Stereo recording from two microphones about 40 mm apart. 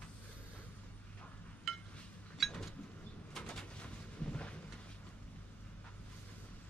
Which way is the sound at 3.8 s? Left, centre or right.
Left.